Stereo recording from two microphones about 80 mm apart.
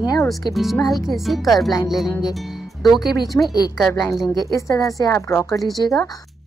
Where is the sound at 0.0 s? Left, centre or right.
Left.